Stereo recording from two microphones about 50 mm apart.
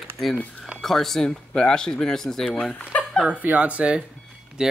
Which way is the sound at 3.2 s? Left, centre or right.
Right.